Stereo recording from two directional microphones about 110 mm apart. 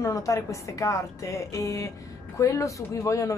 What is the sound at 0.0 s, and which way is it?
A woman's voice, 30° left (ahead or behind).